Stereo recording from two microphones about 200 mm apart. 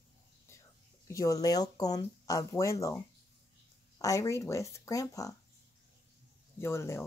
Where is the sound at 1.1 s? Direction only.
15° left (ahead or behind).